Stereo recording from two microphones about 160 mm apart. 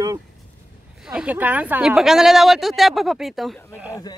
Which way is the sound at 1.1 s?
5° right (ahead or behind).